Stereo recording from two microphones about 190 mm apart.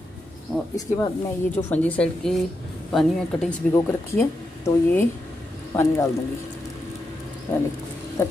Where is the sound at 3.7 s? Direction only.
15° left (ahead or behind).